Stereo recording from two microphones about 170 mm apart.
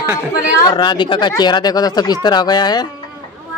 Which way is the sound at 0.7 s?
25° left (ahead or behind).